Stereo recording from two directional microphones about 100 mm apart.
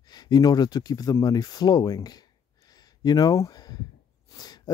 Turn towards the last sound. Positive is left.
turn(degrees=40)  # may be behind; listen again after turning